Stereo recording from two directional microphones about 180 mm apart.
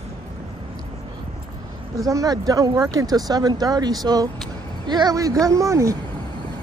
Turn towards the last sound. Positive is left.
turn(degrees=-15)  # may be behind; listen again after turning